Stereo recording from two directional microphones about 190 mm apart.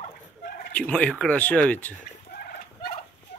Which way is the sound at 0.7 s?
5° left (ahead or behind).